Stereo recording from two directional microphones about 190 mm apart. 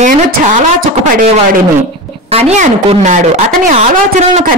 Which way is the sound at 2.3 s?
35° right (ahead or behind).